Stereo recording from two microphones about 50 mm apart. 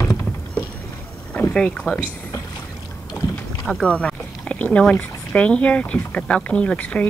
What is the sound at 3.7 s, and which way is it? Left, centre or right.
Rowboat, centre.